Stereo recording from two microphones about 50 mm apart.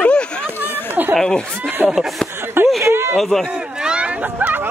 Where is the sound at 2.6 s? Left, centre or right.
Right.